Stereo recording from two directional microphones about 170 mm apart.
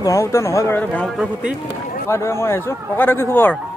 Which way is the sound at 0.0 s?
20° left (ahead or behind).